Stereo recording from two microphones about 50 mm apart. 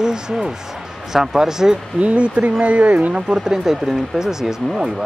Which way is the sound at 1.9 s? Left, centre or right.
Right.